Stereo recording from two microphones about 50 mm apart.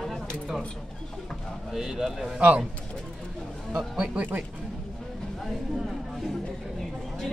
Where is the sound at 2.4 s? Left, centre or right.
Right.